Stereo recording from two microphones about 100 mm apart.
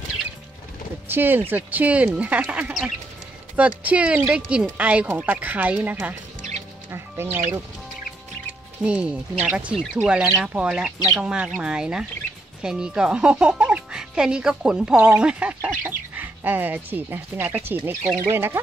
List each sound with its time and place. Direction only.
1.0 s speech: 20° right (ahead or behind)
6.9 s speech: 25° right (ahead or behind)
8.8 s speech: 10° right (ahead or behind)